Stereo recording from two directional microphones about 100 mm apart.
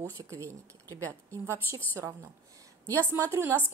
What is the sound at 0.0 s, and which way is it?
A woman's voice, 30° right (ahead or behind).